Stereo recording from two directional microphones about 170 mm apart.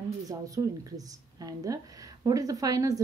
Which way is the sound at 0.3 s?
20° right (ahead or behind).